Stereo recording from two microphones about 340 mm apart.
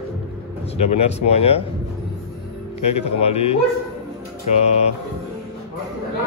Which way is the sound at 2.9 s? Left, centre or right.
Centre.